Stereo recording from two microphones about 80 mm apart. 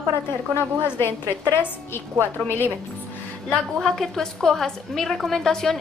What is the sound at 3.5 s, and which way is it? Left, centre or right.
A woman's voice, centre.